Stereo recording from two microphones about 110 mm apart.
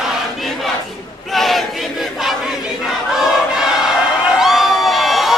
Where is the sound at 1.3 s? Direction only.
Centre (ahead or behind).